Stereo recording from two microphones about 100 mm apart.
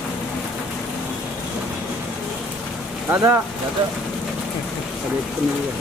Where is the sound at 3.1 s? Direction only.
25° right (ahead or behind).